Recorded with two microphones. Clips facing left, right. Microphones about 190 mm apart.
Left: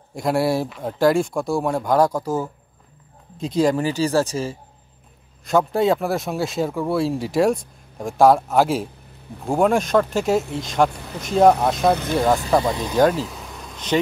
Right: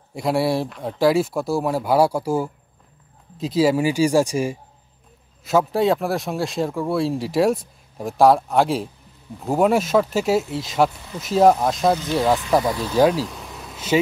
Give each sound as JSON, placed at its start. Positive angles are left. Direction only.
{"t": 0.1, "sound": "speech", "side_deg": 0}
{"t": 11.9, "sound": "speech", "side_deg": 60}
{"t": 12.6, "sound": "speech", "side_deg": 20}
{"t": 12.9, "sound": "vehicle", "side_deg": -5}